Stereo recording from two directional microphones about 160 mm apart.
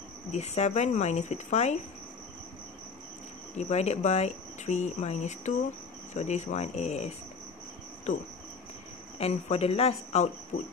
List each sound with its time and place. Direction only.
0.3 s speech: 45° left (ahead or behind)
3.5 s speech: 45° left (ahead or behind)